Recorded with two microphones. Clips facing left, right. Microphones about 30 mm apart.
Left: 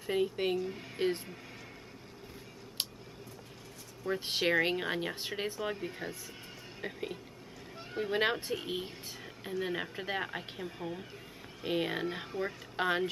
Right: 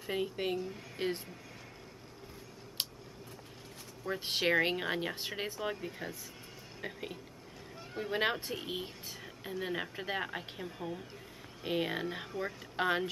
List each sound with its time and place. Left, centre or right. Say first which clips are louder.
0.0 s speech: left 4 dB; centre
2.8 s tick: even; centre
4.0 s speech: left 1 dB; centre
7.7 s vehicle: left 3 dB; left
8.0 s speech: left 2 dB; centre